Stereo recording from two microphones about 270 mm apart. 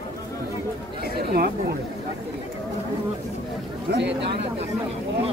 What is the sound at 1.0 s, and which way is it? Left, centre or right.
Chatter, right.